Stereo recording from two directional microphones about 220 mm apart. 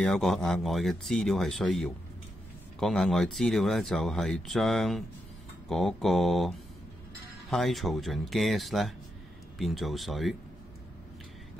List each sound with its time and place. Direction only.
0.0 s speech: centre (ahead or behind)